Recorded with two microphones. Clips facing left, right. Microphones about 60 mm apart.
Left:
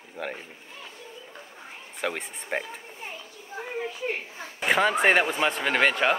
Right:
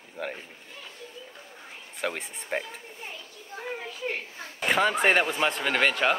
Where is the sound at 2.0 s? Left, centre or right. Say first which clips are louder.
Left 1 dB; centre.